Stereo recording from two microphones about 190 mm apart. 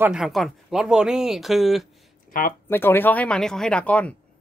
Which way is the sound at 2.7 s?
10° left (ahead or behind).